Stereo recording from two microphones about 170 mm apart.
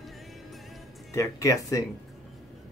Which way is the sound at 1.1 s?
20° left (ahead or behind).